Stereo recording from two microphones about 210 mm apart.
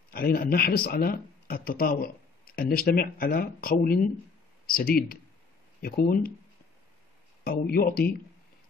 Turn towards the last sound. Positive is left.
turn(degrees=45)  # may be behind; listen again after turning